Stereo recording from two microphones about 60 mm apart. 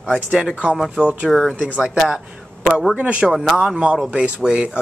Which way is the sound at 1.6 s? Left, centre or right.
Centre.